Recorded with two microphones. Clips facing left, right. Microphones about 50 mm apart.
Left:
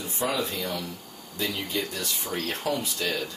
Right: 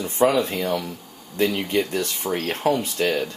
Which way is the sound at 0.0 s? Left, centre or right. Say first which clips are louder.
Right 11 dB; right.